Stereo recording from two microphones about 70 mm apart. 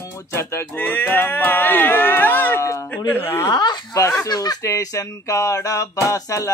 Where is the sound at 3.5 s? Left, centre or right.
Left.